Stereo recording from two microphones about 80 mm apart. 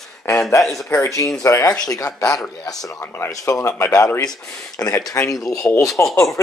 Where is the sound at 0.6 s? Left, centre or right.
Centre.